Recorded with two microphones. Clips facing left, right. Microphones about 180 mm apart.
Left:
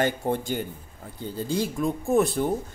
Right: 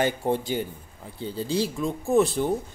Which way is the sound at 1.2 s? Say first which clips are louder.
Right 1 dB; 45° left (ahead or behind).